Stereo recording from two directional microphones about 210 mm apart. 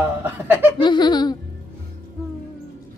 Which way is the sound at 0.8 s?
20° left (ahead or behind).